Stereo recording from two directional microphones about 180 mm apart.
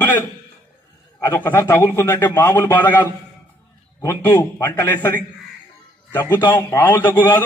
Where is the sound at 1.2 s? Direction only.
15° left (ahead or behind).